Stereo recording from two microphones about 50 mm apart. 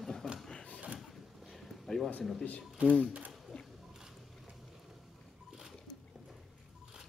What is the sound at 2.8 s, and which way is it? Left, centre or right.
Speech, right.